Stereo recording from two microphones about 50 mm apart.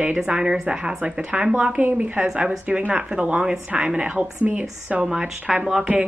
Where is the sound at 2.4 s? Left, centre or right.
Centre.